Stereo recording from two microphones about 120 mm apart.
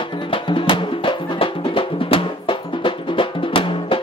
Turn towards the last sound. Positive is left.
turn(degrees=45)  # may be behind; listen again after turning